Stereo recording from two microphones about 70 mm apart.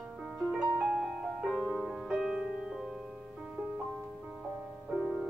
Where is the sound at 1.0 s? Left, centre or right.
Centre.